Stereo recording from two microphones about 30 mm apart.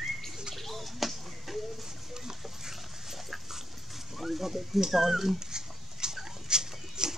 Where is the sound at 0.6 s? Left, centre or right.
Centre.